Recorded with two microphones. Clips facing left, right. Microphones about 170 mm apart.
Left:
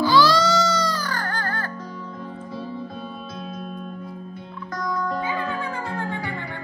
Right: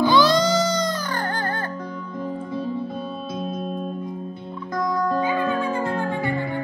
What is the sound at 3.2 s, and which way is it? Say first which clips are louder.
Music: right 5 dB; 30° right (ahead or behind).